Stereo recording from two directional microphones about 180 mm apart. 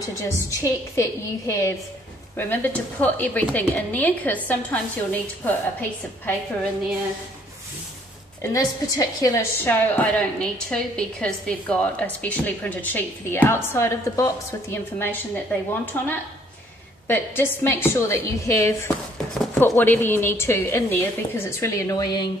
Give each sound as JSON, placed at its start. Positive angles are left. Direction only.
{"t": 0.0, "sound": "a woman's voice", "side_deg": 20}
{"t": 8.4, "sound": "a woman's voice", "side_deg": 20}